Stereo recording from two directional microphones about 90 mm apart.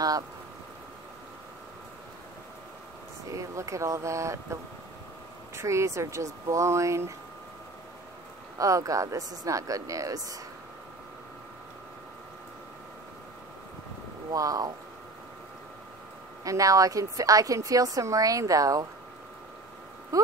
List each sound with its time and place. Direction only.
3.3 s a woman's voice: 35° right (ahead or behind)
5.6 s a woman's voice: 35° right (ahead or behind)
8.5 s a woman's voice: 40° right (ahead or behind)
14.3 s speech: 40° right (ahead or behind)
16.4 s a woman's voice: 40° right (ahead or behind)